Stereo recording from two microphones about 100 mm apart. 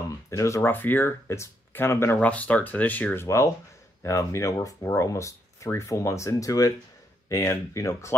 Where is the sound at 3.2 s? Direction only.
30° left (ahead or behind).